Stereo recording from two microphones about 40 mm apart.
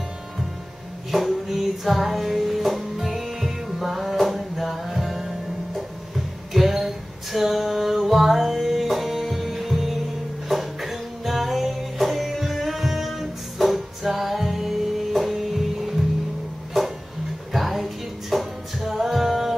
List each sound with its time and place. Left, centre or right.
1.1 s music: centre
5.8 s a sound: centre
7.3 s music: centre
17.5 s music: centre